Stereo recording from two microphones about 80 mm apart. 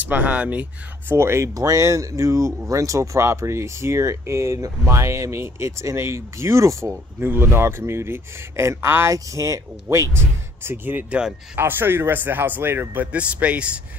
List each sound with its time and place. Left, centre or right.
0.0 s speech: right
1.1 s speech: right
7.2 s speech: right
9.1 s speech: right
11.1 s speech: centre
11.5 s speech: right